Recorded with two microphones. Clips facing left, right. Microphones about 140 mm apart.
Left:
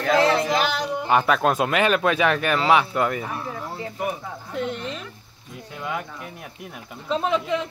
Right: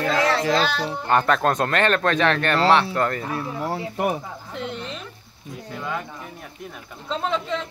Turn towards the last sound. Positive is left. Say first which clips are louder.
# left 3 dB
turn(degrees=10)  # may be behind; listen again after turning